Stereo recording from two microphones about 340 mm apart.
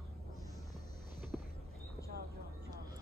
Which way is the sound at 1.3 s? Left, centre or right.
Centre.